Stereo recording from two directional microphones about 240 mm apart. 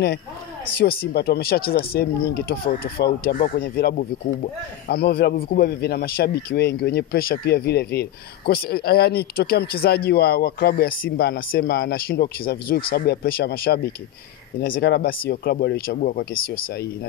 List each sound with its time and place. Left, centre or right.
0.7 s a man's voice: left